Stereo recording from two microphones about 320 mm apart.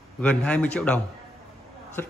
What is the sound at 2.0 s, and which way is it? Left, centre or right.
Speech, centre.